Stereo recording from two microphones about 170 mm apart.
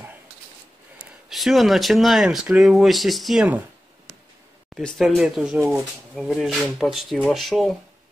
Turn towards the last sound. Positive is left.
turn(degrees=0)  # may be behind; listen again after turning